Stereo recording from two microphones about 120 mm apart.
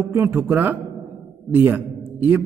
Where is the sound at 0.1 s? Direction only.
20° right (ahead or behind).